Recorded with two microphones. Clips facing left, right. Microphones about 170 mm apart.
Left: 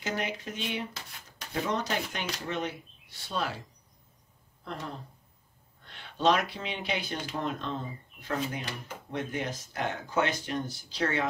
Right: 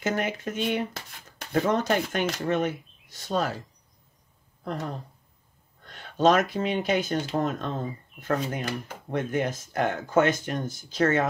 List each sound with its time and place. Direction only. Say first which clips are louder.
0.0 s speech: right 6 dB; 50° right (ahead or behind)
4.6 s speech: right 6 dB; 45° right (ahead or behind)